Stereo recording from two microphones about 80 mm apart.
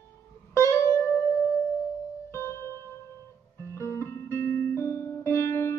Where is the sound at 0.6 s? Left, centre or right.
Left.